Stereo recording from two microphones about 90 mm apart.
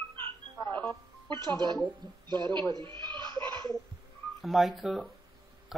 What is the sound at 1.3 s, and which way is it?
A man's voice, 55° right (ahead or behind).